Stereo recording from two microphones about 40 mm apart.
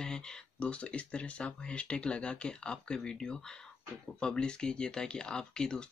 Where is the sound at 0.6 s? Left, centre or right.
Left.